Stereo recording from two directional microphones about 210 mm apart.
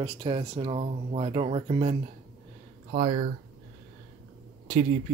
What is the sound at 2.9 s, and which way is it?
Speech, 30° right (ahead or behind).